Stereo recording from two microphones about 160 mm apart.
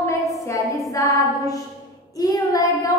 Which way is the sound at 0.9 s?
20° left (ahead or behind).